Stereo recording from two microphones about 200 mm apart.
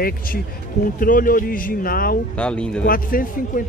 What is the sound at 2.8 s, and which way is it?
Speech, 45° left (ahead or behind).